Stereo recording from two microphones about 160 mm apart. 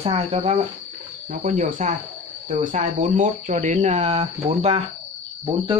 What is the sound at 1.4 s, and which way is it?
Speech, 50° right (ahead or behind).